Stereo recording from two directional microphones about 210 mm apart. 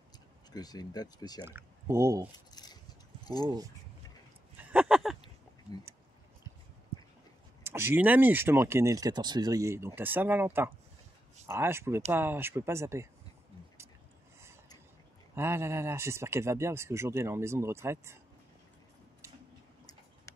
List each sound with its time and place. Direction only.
0.5 s speech: 20° left (ahead or behind)
1.4 s speech: 10° right (ahead or behind)
2.3 s keys jangling: 20° left (ahead or behind)
4.7 s a sound: 5° right (ahead or behind)
7.6 s speech: 10° right (ahead or behind)
15.3 s speech: 10° right (ahead or behind)
20.3 s tick-tock: 15° left (ahead or behind)